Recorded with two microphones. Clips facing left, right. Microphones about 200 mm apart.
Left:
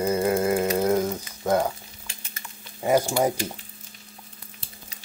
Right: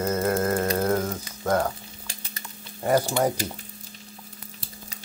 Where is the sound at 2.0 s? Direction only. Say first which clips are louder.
Right 3 dB; 35° right (ahead or behind).